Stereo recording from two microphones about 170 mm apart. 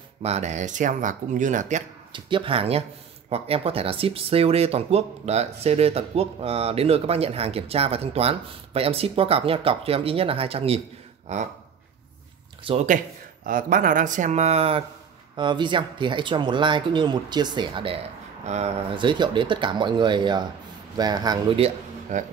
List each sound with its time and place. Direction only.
0.2 s speech: 40° right (ahead or behind)
2.1 s speech: 30° right (ahead or behind)
12.6 s speech: 40° right (ahead or behind)
13.5 s speech: 55° right (ahead or behind)
18.9 s speech: 25° right (ahead or behind)
22.1 s speech: 50° right (ahead or behind)